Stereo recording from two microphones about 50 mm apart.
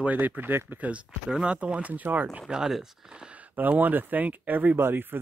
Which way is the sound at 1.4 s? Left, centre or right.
Right.